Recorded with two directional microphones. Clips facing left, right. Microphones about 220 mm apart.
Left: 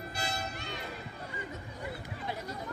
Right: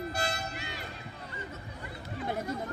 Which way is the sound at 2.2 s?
50° right (ahead or behind).